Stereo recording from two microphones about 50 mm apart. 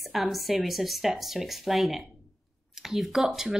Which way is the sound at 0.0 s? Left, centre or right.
Centre.